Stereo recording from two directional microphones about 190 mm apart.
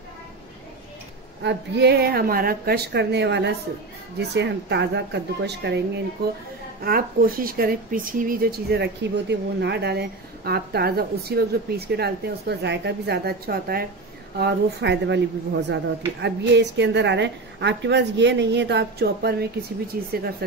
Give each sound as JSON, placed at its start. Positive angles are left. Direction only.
{"t": 1.4, "sound": "speech", "side_deg": -65}
{"t": 6.8, "sound": "speech", "side_deg": -50}